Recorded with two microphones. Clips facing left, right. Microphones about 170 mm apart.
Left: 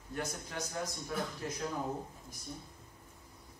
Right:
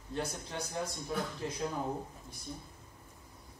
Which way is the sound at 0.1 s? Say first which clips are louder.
Right 2 dB; 25° right (ahead or behind).